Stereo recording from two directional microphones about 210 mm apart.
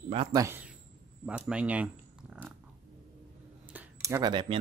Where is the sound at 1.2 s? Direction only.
5° right (ahead or behind).